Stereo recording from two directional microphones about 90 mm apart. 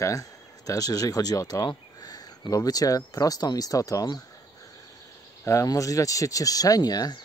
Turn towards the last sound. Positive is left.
turn(degrees=45)  # may be behind; listen again after turning